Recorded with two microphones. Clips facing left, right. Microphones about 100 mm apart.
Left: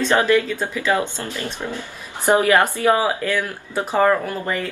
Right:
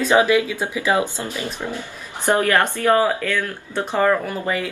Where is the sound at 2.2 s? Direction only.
15° left (ahead or behind).